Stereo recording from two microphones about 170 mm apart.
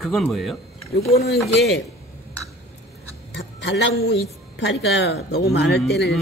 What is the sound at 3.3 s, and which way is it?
A woman's voice, 90° left.